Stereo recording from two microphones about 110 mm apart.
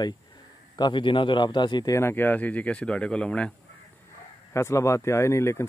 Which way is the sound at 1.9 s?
25° left (ahead or behind).